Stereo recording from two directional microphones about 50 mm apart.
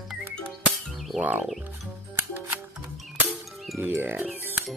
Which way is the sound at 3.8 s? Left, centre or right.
Right.